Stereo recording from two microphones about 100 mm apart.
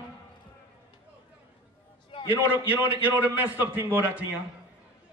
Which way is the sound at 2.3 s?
20° right (ahead or behind).